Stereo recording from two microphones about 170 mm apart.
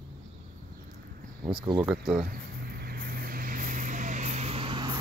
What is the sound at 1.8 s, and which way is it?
Speech, 5° right (ahead or behind).